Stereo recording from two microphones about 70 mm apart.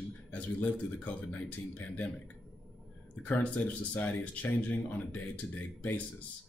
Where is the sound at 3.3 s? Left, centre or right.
Centre.